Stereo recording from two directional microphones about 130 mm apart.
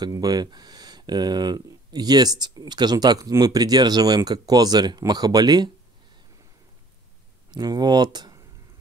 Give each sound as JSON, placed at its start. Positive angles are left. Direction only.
{"t": 0.0, "sound": "speech", "side_deg": -30}
{"t": 7.5, "sound": "speech", "side_deg": -30}